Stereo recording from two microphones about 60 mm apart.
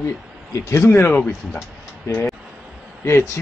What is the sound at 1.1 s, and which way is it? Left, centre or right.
Speech, left.